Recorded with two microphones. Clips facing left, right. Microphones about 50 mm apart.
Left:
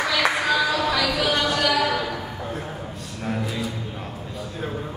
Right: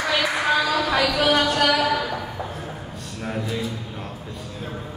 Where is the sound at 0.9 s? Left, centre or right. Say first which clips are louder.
Right 3 dB; right.